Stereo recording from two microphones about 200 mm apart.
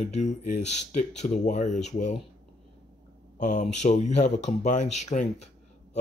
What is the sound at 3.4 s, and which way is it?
Speech, 35° left (ahead or behind).